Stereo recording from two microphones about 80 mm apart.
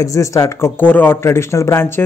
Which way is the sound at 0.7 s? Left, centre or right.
Left.